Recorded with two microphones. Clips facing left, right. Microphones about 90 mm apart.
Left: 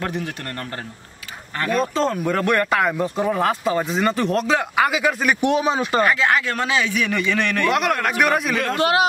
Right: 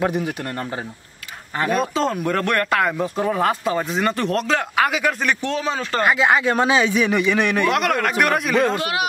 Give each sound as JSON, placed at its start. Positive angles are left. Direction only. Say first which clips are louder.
{"t": 0.0, "sound": "a man's voice", "louder": "right 5 dB", "side_deg": -15}
{"t": 6.0, "sound": "a man's voice", "louder": "right 2 dB", "side_deg": -15}
{"t": 7.7, "sound": "a man's voice", "louder": "even", "side_deg": 0}
{"t": 8.5, "sound": "speech", "louder": "right 3 dB", "side_deg": -20}